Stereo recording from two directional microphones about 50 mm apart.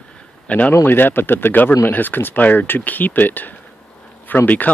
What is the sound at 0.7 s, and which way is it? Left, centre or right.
Speech, left.